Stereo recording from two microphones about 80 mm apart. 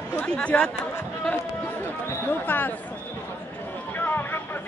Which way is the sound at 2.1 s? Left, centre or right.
Left.